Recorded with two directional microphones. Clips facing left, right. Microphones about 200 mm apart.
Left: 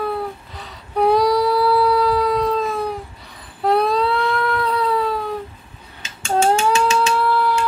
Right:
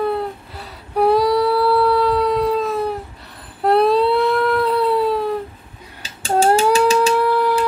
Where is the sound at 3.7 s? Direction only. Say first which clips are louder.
Right 3 dB; 5° right (ahead or behind).